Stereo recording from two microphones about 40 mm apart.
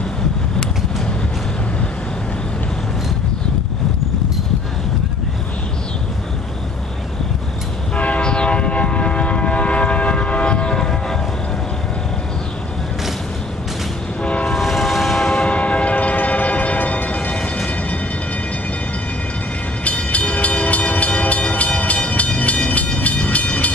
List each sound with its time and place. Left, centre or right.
7.9 s train: left; by 11.1 s centre
14.5 s vehicle: centre
15.3 s train: left
17.3 s vehicle: centre
19.8 s train: left